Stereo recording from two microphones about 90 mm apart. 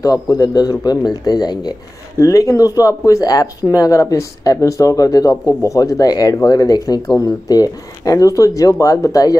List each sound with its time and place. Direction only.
0.0 s speech: 40° left (ahead or behind)